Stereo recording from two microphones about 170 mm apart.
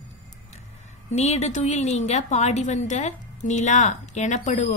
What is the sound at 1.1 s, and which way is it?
A woman's voice, 40° left (ahead or behind).